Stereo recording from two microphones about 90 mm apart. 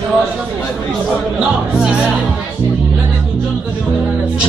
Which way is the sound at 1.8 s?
10° right (ahead or behind).